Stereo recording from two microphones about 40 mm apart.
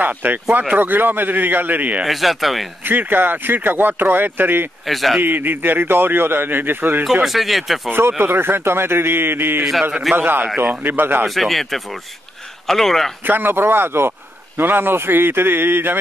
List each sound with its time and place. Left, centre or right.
0.0 s speech: right
2.0 s speech: centre
2.8 s speech: right
4.8 s speech: centre
5.2 s speech: right
7.2 s speech: centre
8.2 s a man's voice: right
11.2 s speech: centre
13.2 s a man's voice: right
14.6 s a man's voice: right